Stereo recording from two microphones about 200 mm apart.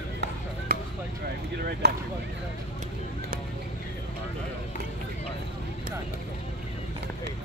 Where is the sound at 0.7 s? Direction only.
50° right (ahead or behind).